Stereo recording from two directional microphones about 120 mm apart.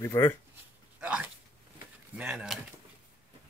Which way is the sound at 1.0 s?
15° right (ahead or behind).